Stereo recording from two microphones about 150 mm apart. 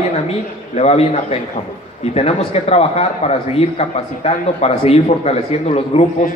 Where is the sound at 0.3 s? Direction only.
45° left (ahead or behind).